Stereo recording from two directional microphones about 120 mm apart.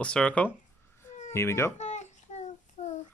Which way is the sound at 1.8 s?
75° left (ahead or behind).